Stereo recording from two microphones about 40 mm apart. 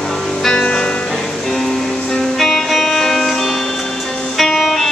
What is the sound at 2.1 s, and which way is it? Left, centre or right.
Music, centre.